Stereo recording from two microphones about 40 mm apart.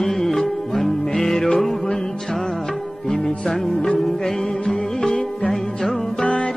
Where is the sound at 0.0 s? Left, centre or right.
Centre.